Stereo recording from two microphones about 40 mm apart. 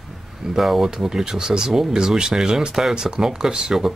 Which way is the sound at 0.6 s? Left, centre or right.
Centre.